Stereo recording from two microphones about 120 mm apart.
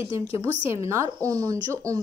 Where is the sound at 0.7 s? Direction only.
25° right (ahead or behind).